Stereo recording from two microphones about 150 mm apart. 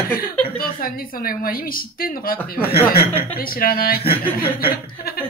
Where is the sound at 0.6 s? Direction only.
75° left (ahead or behind).